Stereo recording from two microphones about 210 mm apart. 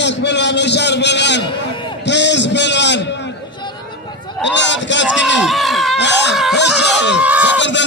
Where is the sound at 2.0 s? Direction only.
55° left (ahead or behind).